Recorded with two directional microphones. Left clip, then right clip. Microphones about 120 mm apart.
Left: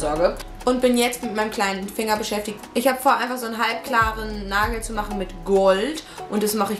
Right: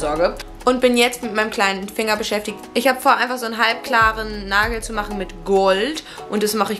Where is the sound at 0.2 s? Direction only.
15° right (ahead or behind).